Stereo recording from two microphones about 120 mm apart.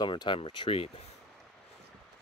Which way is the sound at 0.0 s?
40° left (ahead or behind).